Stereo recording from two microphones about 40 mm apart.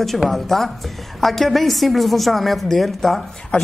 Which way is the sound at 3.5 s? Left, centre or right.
Left.